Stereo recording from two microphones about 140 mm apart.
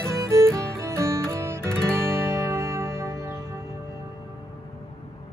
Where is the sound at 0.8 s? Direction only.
20° right (ahead or behind).